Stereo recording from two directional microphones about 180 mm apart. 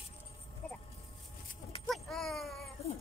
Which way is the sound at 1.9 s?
Centre (ahead or behind).